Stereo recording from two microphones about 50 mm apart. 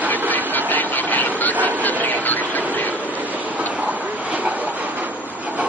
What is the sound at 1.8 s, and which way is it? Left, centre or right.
Train, left.